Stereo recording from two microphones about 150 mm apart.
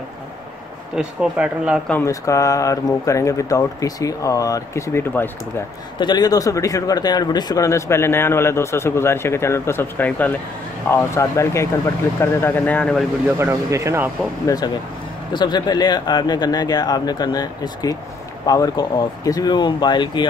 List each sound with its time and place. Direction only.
0.9 s speech: 5° right (ahead or behind)
2.0 s speech: 20° left (ahead or behind)
5.9 s speech: 30° left (ahead or behind); by 13.0 s 10° left (ahead or behind)
13.4 s speech: 20° right (ahead or behind)
14.4 s speech: 25° left (ahead or behind)